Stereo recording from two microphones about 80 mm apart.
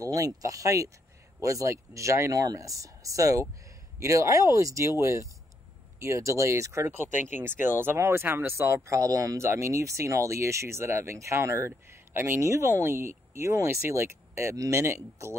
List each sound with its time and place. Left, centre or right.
0.0 s speech: right
7.2 s speech: right